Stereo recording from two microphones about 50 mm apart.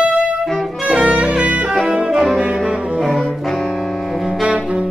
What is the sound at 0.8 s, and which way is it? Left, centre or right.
Music, centre.